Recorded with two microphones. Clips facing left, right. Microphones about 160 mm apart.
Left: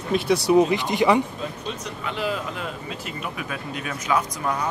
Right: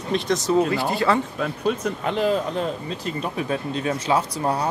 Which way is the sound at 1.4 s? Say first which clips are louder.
Right 7 dB; 55° right (ahead or behind).